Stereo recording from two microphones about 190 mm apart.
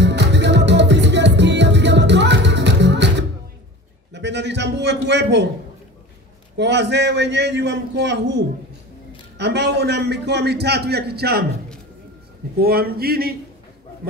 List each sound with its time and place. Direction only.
0.0 s music: 65° right (ahead or behind)
4.1 s a sound: 65° right (ahead or behind)
6.5 s a man's voice: 65° right (ahead or behind)
9.4 s a man's voice: 60° right (ahead or behind)
12.5 s a man's voice: 55° right (ahead or behind)